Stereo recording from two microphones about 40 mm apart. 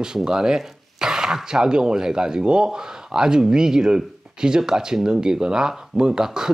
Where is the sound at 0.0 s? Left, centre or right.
Centre.